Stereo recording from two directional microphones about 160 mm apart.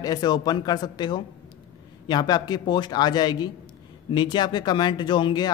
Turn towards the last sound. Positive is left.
turn(degrees=30)  # may be behind; listen again after turning